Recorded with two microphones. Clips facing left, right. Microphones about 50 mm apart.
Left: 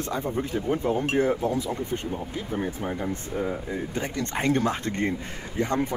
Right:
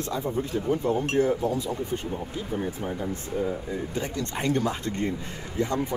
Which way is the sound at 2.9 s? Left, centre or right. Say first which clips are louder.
Left 1 dB; left.